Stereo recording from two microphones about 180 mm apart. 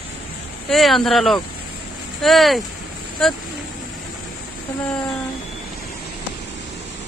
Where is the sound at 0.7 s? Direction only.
Centre (ahead or behind).